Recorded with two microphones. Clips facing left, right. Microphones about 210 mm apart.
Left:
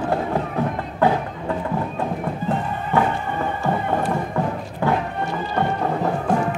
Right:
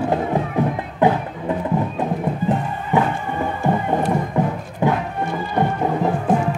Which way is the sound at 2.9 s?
20° right (ahead or behind).